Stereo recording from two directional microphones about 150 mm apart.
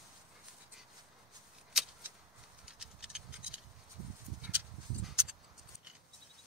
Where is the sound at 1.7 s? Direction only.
5° right (ahead or behind).